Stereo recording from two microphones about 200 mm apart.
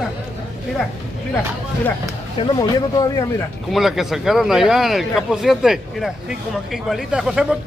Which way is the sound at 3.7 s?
Centre (ahead or behind).